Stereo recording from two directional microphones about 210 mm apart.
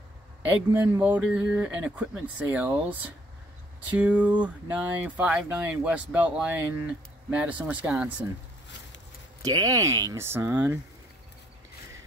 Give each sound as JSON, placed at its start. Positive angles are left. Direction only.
{"t": 0.7, "sound": "speech", "side_deg": -10}
{"t": 9.4, "sound": "speech", "side_deg": -15}